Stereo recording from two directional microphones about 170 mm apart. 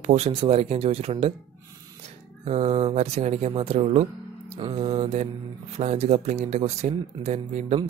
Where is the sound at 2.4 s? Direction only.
35° right (ahead or behind).